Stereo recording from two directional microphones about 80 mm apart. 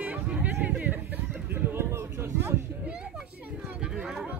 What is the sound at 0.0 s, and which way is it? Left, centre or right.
Chatter, centre.